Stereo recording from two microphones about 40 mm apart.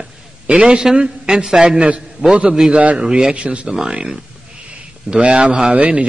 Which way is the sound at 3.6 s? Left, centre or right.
Centre.